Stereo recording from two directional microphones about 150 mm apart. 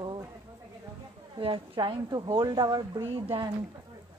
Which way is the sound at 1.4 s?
35° right (ahead or behind).